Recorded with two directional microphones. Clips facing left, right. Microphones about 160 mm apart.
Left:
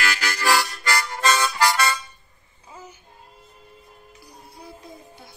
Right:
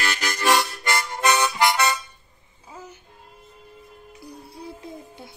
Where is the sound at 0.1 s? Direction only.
20° right (ahead or behind).